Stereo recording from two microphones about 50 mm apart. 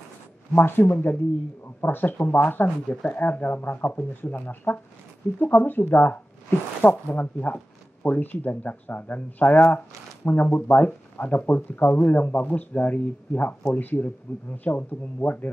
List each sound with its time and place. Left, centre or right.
0.6 s speech: left
3.0 s speech: left